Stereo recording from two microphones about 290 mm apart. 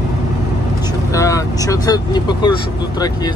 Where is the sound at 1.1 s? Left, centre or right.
Centre.